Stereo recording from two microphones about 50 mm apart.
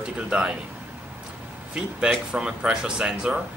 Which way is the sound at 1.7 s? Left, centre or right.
Centre.